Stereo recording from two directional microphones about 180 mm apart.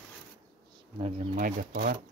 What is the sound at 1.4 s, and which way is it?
Speech, 50° right (ahead or behind).